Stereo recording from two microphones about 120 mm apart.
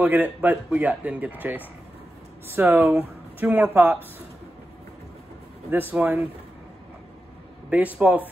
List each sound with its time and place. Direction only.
0.0 s speech: 15° right (ahead or behind)
5.7 s speech: 15° right (ahead or behind)
7.7 s speech: 10° right (ahead or behind)